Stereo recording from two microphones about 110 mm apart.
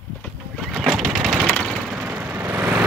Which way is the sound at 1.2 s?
10° right (ahead or behind).